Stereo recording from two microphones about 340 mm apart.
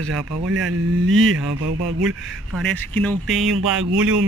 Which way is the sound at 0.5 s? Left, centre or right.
Right.